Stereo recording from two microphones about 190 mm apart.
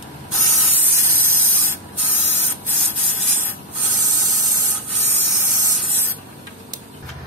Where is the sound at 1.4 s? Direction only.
10° right (ahead or behind).